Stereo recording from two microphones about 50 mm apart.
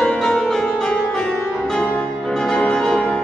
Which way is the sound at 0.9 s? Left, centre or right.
Centre.